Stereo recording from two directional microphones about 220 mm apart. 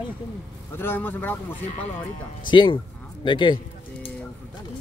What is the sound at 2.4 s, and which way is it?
Speech, 20° left (ahead or behind).